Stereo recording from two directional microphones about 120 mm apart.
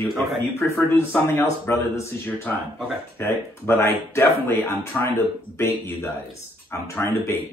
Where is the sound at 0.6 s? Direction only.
20° left (ahead or behind).